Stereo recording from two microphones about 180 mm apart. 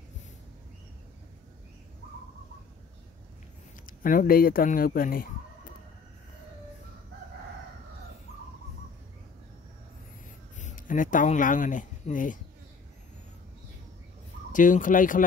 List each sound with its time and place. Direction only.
3.8 s speech: 50° left (ahead or behind)
10.6 s speech: 45° left (ahead or behind)
14.5 s speech: 45° left (ahead or behind)